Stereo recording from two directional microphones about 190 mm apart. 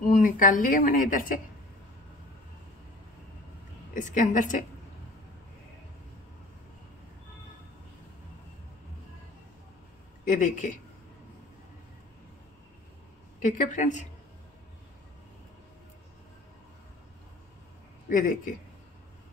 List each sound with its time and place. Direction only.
0.1 s speech: 45° left (ahead or behind)
3.9 s speech: 40° left (ahead or behind)
10.2 s speech: 45° left (ahead or behind)
13.4 s a woman's voice: 40° left (ahead or behind)
18.0 s a man's voice: 45° left (ahead or behind)